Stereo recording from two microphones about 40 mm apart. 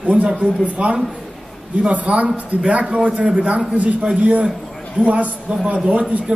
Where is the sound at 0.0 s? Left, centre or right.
Right.